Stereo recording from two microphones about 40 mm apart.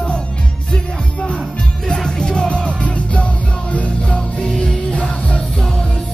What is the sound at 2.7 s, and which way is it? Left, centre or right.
Music, left.